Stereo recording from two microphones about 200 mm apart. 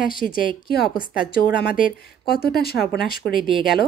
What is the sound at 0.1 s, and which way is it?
Speech, 45° left (ahead or behind).